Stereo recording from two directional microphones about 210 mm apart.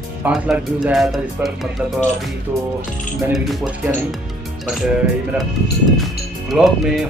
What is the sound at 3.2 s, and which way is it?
Speech, 5° right (ahead or behind).